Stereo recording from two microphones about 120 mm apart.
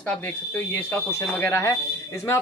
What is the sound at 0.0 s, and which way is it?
Speech, 10° left (ahead or behind).